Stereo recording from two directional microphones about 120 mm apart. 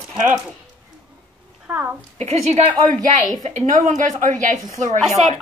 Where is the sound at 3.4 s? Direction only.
80° right.